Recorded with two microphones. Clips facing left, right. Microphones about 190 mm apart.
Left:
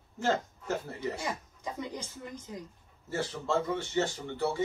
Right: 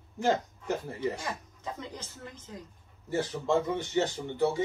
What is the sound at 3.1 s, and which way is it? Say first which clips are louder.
A man's voice: right 3 dB; 15° right (ahead or behind).